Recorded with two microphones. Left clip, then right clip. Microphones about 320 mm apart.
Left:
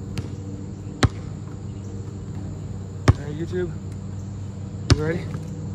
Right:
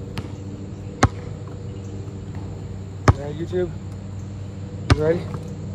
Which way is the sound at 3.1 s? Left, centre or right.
Centre.